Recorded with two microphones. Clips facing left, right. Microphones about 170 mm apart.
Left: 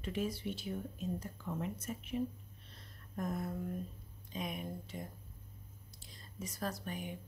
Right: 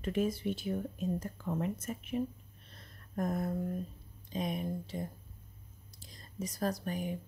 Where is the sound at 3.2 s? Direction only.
45° right (ahead or behind).